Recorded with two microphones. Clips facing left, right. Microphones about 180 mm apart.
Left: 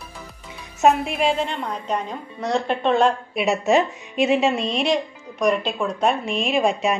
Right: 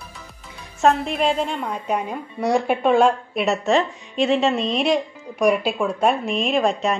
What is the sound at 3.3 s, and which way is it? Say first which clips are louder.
A woman's voice: left 1 dB; 15° left (ahead or behind).